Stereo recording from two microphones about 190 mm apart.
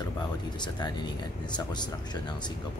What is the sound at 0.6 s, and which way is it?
Speech, 20° left (ahead or behind).